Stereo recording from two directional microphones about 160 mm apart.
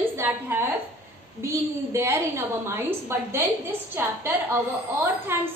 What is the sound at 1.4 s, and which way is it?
A woman's voice, 15° right (ahead or behind).